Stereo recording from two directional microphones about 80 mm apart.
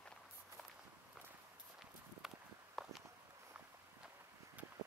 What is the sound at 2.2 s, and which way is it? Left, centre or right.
Walk, centre.